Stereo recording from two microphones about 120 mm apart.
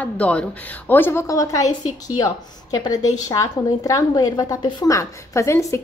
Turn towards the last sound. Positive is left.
turn(degrees=25)  # may be behind; listen again after turning